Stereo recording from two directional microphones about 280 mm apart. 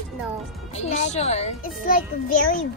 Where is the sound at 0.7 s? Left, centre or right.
Left.